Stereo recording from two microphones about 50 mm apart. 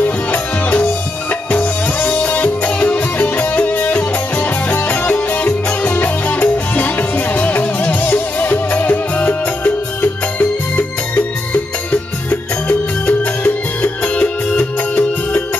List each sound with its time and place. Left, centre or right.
0.0 s music: left
10.8 s music: left